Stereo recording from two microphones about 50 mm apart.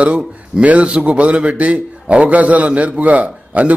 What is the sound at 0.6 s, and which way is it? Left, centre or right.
A man's voice, right.